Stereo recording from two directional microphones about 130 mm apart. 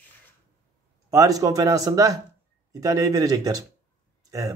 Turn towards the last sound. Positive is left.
turn(degrees=-25)  # may be behind; listen again after turning